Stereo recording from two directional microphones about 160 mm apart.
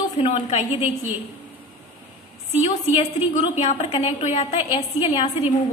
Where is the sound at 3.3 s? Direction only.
45° left (ahead or behind).